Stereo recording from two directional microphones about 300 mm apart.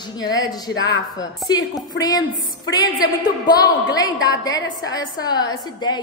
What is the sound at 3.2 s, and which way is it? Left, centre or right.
Speech, centre.